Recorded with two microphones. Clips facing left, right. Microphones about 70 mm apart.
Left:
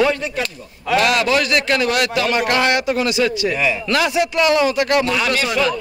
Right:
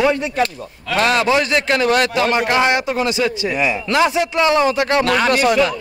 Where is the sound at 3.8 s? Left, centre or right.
Right.